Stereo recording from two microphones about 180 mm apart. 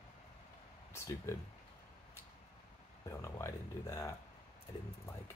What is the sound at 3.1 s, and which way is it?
Speech, 15° left (ahead or behind).